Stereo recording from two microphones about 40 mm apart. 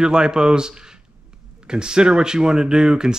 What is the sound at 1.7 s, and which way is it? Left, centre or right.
Speech, right.